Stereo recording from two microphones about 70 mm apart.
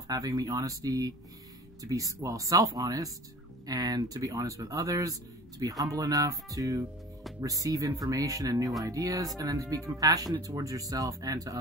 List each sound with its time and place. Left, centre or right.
0.1 s speech: right